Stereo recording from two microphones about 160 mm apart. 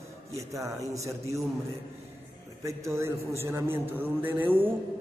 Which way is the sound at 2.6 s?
20° right (ahead or behind).